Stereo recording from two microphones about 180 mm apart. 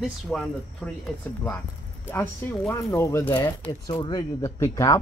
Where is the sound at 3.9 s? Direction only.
25° left (ahead or behind).